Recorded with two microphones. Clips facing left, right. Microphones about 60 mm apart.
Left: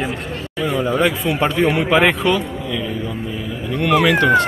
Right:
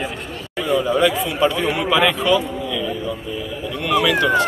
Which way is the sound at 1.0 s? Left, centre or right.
Left.